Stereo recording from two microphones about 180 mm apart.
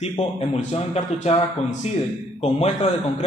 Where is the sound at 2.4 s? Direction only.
35° left (ahead or behind).